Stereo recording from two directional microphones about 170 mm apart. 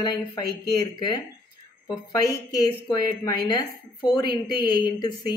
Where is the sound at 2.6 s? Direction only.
20° left (ahead or behind).